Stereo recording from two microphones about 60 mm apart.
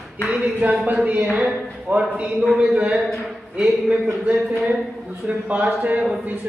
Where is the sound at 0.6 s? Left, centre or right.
Right.